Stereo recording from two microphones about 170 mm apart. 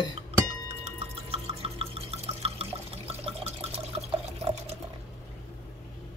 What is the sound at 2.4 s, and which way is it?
Water, 35° right (ahead or behind).